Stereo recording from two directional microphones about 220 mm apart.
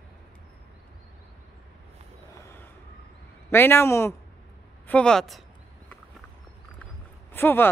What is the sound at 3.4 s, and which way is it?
A man's voice, 10° left (ahead or behind).